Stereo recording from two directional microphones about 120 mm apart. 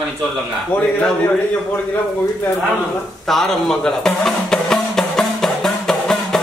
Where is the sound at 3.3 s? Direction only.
5° left (ahead or behind).